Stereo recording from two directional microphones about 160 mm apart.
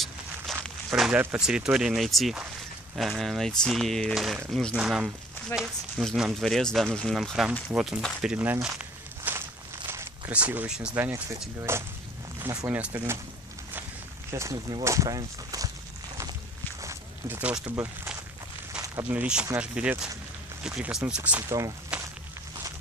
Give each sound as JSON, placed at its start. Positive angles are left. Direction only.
{"t": 0.8, "sound": "speech", "side_deg": -5}
{"t": 8.0, "sound": "walk", "side_deg": -5}
{"t": 9.8, "sound": "speech", "side_deg": -15}
{"t": 14.3, "sound": "speech", "side_deg": -20}
{"t": 16.8, "sound": "speech", "side_deg": -10}